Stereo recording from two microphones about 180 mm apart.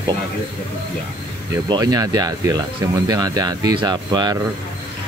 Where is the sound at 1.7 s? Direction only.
20° right (ahead or behind).